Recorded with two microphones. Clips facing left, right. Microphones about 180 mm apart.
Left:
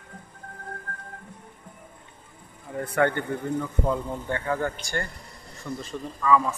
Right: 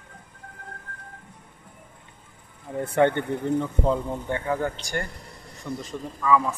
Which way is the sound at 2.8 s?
25° right (ahead or behind).